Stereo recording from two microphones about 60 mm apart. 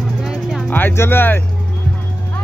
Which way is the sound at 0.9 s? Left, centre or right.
Left.